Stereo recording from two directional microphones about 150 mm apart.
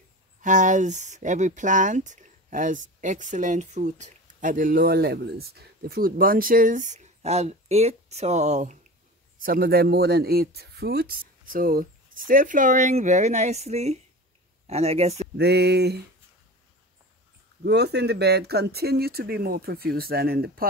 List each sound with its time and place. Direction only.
0.4 s speech: 55° right (ahead or behind)
9.4 s speech: 75° right (ahead or behind); by 15.2 s 45° right (ahead or behind)
15.3 s speech: 90° right
17.6 s speech: 90° right